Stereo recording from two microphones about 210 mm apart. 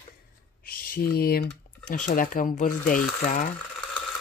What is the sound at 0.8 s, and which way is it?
Speech, 45° left (ahead or behind).